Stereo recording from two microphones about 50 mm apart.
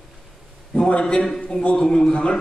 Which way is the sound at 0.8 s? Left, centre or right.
Left.